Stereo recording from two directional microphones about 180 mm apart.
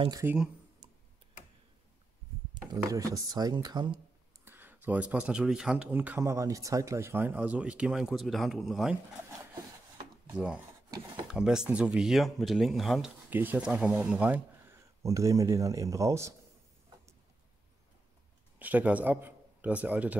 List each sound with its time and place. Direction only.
0.2 s speech: 10° right (ahead or behind)
2.5 s speech: 20° right (ahead or behind)
4.5 s speech: 10° right (ahead or behind)
10.2 s speech: 5° right (ahead or behind)
18.6 s a man's voice: 10° right (ahead or behind)